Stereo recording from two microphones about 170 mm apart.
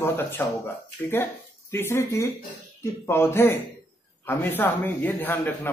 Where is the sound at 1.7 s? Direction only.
15° left (ahead or behind).